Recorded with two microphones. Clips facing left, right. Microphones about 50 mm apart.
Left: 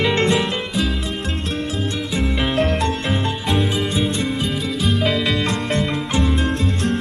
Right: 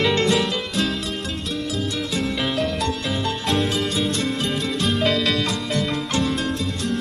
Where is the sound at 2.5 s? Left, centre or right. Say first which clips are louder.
Left 4 dB; left.